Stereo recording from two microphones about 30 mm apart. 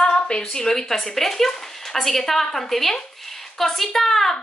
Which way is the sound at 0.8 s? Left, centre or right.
Centre.